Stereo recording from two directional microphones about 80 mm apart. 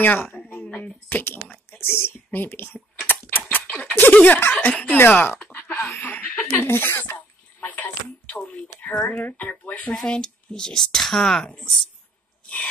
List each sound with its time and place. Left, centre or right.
0.0 s a woman's voice: left
0.7 s a sound: centre
1.7 s a woman's voice: left
3.1 s typing: left
3.9 s speech: left
5.4 s a sound: left
9.8 s speech: centre